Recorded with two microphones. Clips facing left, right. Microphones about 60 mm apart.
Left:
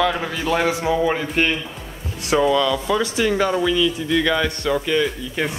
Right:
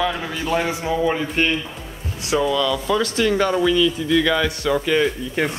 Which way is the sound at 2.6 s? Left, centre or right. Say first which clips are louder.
Even; centre.